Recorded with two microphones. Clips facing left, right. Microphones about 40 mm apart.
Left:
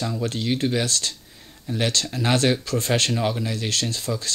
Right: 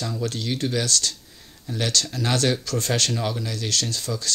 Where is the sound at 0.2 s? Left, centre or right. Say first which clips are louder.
Left 3 dB; left.